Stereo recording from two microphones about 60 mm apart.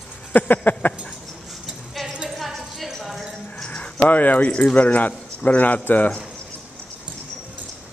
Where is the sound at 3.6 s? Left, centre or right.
Centre.